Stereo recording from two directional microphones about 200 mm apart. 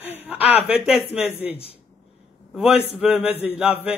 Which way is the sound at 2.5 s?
Centre (ahead or behind).